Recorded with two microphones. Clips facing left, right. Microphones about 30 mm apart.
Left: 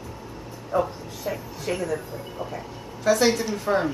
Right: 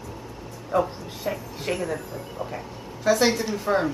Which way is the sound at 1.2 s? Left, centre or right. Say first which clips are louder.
Right 1 dB; centre.